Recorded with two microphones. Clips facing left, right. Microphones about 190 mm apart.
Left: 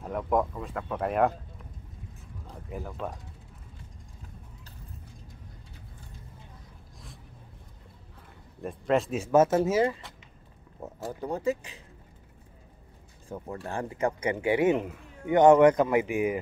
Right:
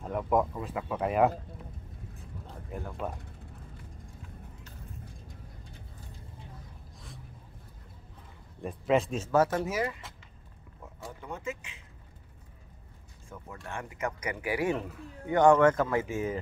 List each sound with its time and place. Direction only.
0.0 s speech: centre (ahead or behind)
2.7 s speech: centre (ahead or behind)
8.5 s speech: centre (ahead or behind)
9.2 s a man's voice: 20° left (ahead or behind)
11.1 s speech: 35° left (ahead or behind)
13.3 s a man's voice: 35° left (ahead or behind); by 16.3 s 15° left (ahead or behind)